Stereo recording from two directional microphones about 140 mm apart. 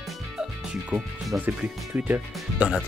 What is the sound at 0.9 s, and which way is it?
Speech, 10° right (ahead or behind).